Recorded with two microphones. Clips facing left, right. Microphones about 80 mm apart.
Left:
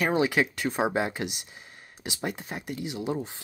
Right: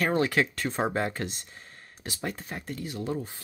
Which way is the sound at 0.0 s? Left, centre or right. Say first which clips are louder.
Left 1 dB; centre.